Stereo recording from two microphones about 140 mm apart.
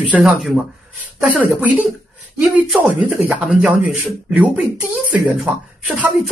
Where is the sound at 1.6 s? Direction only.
10° right (ahead or behind).